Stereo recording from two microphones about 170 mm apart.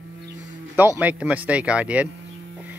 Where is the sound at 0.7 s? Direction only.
10° right (ahead or behind).